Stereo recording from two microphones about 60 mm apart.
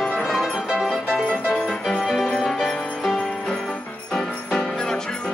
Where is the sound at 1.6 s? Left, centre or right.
Centre.